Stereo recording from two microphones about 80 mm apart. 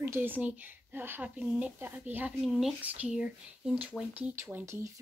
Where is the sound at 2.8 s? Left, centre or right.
Centre.